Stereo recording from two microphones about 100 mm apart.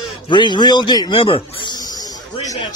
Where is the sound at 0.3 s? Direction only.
50° left (ahead or behind).